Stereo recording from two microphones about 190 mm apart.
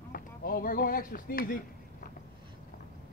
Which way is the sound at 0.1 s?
50° left (ahead or behind).